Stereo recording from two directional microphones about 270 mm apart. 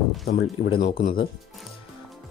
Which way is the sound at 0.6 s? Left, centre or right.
Left.